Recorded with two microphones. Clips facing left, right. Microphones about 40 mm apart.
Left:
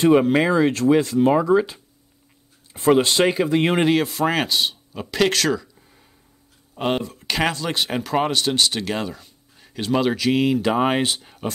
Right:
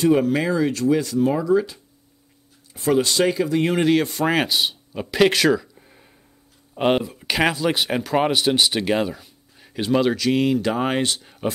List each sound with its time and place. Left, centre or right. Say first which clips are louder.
0.0 s speech: left 2 dB; left
3.9 s speech: right 1 dB; centre